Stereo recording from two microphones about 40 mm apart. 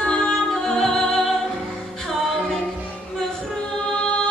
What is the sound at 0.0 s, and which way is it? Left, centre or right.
Music, centre.